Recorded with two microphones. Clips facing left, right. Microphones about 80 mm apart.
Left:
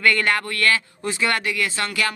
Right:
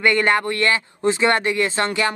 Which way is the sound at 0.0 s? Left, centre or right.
Right.